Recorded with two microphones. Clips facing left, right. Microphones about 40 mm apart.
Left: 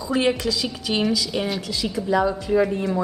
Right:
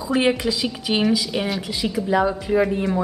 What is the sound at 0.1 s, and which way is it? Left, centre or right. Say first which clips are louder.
A woman's voice: right 2 dB; centre.